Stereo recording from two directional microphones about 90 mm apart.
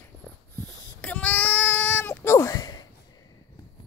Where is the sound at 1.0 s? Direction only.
15° left (ahead or behind); by 2.6 s 35° left (ahead or behind).